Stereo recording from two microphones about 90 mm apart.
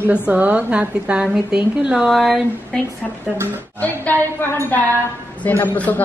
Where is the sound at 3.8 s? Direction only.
15° left (ahead or behind).